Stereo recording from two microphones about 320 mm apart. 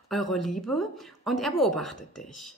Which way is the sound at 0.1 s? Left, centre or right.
Centre.